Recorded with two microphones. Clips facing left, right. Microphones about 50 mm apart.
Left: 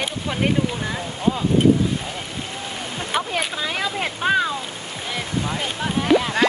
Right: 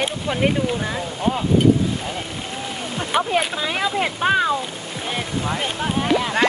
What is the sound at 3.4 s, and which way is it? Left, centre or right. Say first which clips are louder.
Speech: right 3 dB; centre.